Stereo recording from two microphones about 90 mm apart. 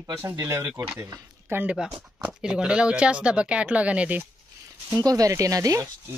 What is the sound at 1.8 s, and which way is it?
Speech, 10° right (ahead or behind).